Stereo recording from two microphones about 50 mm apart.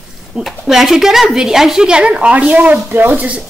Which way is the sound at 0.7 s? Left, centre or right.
Centre.